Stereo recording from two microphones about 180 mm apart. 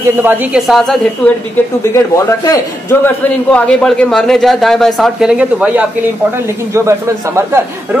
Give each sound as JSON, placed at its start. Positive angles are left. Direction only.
{"t": 0.2, "sound": "speech", "side_deg": -10}
{"t": 2.1, "sound": "a man's voice", "side_deg": 15}
{"t": 3.3, "sound": "speech", "side_deg": 5}